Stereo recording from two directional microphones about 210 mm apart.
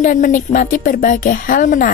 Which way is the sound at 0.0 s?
40° left (ahead or behind).